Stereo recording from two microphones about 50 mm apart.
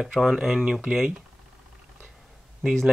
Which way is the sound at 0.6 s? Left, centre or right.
Centre.